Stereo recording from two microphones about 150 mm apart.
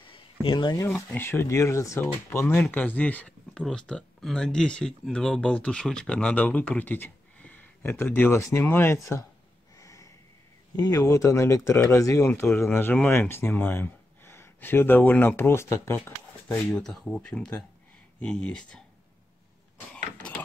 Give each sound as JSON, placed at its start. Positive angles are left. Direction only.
{"t": 0.0, "sound": "a sound", "side_deg": 35}
{"t": 0.8, "sound": "speech", "side_deg": 15}
{"t": 9.8, "sound": "snort", "side_deg": 20}
{"t": 10.8, "sound": "speech", "side_deg": 25}
{"t": 16.4, "sound": "speech", "side_deg": 5}